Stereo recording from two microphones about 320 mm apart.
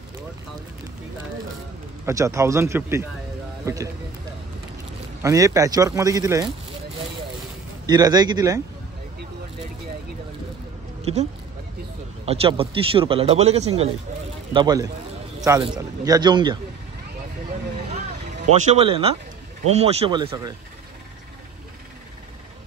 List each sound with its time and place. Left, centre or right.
2.0 s speech: centre
5.2 s speech: centre
7.8 s speech: centre
11.0 s a sound: centre
12.3 s speech: centre
18.5 s speech: centre